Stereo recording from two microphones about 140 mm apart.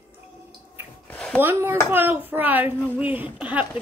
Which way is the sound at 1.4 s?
15° right (ahead or behind).